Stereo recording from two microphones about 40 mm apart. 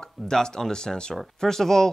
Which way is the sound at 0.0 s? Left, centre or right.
Centre.